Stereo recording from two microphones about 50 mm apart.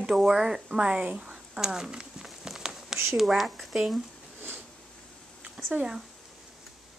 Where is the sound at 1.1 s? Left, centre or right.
Centre.